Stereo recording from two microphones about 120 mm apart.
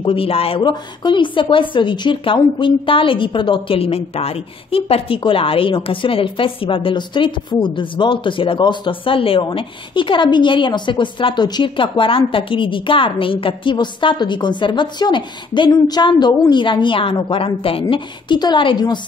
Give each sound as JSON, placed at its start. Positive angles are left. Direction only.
{"t": 0.0, "sound": "speech", "side_deg": 50}